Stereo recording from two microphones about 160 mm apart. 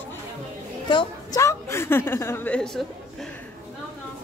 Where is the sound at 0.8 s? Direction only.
25° left (ahead or behind); by 2.9 s 5° left (ahead or behind).